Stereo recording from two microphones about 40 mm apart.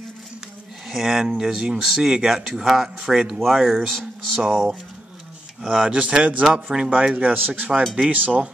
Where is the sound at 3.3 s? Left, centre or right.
Centre.